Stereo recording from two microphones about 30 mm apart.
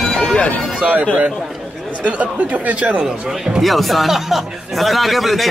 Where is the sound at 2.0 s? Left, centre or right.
Right.